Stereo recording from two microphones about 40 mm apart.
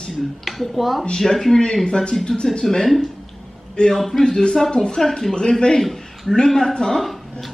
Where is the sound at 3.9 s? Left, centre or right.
Centre.